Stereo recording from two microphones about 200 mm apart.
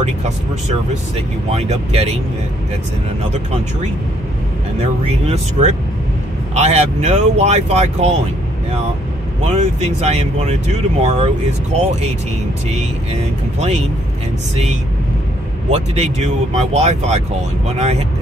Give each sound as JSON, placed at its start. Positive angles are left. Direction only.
{"t": 1.1, "sound": "speech", "side_deg": -30}
{"t": 5.0, "sound": "speech", "side_deg": -35}
{"t": 9.5, "sound": "speech", "side_deg": -35}
{"t": 12.7, "sound": "speech", "side_deg": -30}
{"t": 15.7, "sound": "speech", "side_deg": -30}